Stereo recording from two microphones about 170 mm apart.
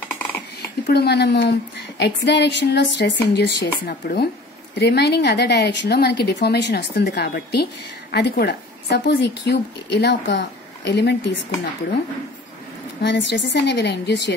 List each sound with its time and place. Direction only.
0.8 s a woman's voice: 75° left (ahead or behind)
3.3 s a woman's voice: 75° left (ahead or behind); by 11.3 s 90° left
13.0 s a woman's voice: 90° left